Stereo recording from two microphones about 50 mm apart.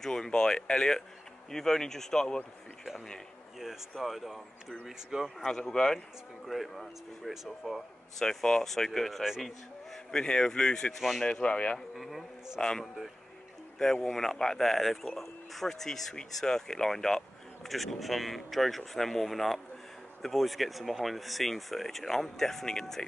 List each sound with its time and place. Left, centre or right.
0.0 s speech: centre
3.5 s speech: centre
5.5 s speech: centre
8.3 s speech: centre
11.9 s speech: centre
12.5 s speech: centre
14.0 s speech: centre